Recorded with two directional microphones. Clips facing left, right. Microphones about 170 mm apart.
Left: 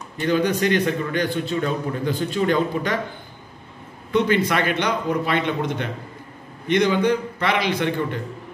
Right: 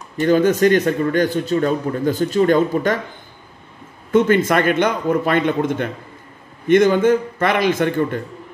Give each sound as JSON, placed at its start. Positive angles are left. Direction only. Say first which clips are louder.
{"t": 0.2, "sound": "a man's voice", "louder": "right 6 dB", "side_deg": -45}
{"t": 4.1, "sound": "a man's voice", "louder": "right 5 dB", "side_deg": -45}